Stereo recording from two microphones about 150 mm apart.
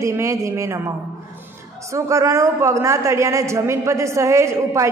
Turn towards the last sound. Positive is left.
turn(degrees=-20)  # may be behind; listen again after turning